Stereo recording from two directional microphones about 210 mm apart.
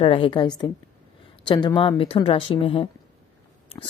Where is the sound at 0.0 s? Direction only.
25° left (ahead or behind).